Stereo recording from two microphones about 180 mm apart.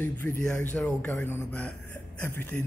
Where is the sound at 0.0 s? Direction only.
10° left (ahead or behind).